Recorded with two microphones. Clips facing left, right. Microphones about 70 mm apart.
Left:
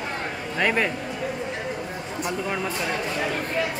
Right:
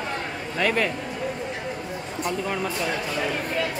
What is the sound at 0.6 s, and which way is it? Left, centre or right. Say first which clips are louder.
Speech: even; left.